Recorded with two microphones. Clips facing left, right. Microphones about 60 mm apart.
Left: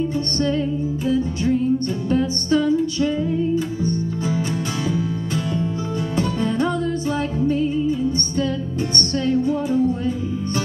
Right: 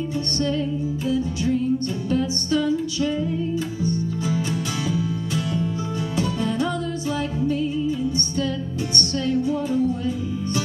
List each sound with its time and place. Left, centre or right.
0.4 s music: left
4.8 s music: left
8.9 s music: left